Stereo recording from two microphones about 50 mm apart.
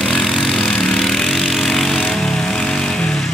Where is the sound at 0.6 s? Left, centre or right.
Centre.